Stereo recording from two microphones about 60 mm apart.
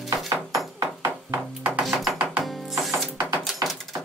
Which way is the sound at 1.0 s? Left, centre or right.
Right.